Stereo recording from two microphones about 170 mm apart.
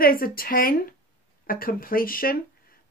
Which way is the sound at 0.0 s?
60° left (ahead or behind).